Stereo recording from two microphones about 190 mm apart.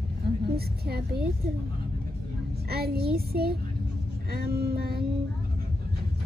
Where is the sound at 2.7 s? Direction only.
55° right (ahead or behind).